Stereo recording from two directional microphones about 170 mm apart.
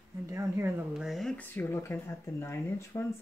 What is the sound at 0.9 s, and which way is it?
Speech, centre (ahead or behind).